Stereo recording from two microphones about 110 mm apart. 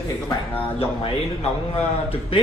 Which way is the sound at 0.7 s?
60° left (ahead or behind).